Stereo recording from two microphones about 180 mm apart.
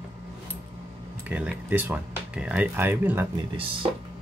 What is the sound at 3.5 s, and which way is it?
Speech, 30° right (ahead or behind).